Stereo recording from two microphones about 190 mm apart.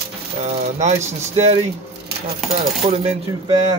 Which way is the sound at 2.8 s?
30° right (ahead or behind).